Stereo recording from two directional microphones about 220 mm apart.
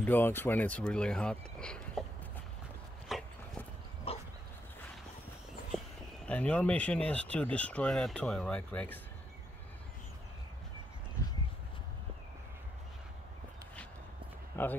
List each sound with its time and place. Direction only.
0.0 s speech: 10° left (ahead or behind)
3.1 s a sound: centre (ahead or behind)
4.1 s dog: 25° left (ahead or behind)
6.2 s speech: 5° left (ahead or behind)
14.5 s a man's voice: 10° left (ahead or behind)